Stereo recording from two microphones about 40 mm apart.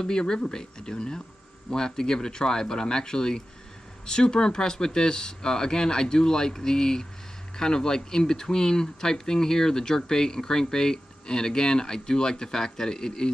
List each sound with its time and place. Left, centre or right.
0.0 s speech: centre